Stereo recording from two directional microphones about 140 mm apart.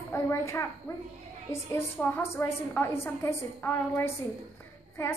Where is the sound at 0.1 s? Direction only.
20° left (ahead or behind).